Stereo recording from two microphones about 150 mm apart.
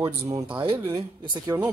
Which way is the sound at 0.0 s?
20° right (ahead or behind).